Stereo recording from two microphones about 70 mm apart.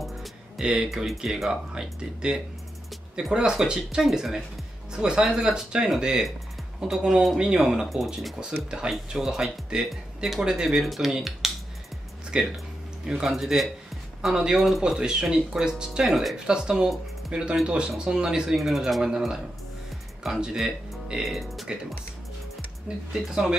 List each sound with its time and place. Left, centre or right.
0.0 s speech: centre
12.3 s speech: centre
22.9 s speech: centre